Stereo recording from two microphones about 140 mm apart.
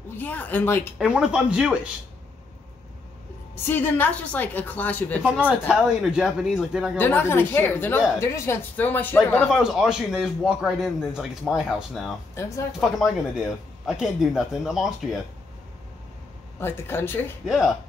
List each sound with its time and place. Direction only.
0.2 s a woman's voice: 10° left (ahead or behind)
0.9 s speech: 5° right (ahead or behind)
3.6 s a woman's voice: 15° left (ahead or behind)
5.2 s a man's voice: 10° right (ahead or behind)
7.0 s a woman's voice: 15° left (ahead or behind)
9.5 s a man's voice: 5° right (ahead or behind)
12.4 s speech: 20° left (ahead or behind)
12.8 s a man's voice: 5° right (ahead or behind)
16.5 s a woman's voice: 15° left (ahead or behind)
17.5 s a man's voice: 5° right (ahead or behind)